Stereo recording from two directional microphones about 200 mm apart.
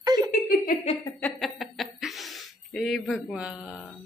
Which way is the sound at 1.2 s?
Centre (ahead or behind).